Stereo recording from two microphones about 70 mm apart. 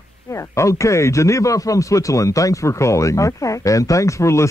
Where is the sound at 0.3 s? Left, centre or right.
Left.